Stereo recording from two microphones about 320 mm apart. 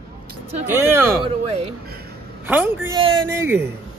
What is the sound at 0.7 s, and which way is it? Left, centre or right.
Speech, centre.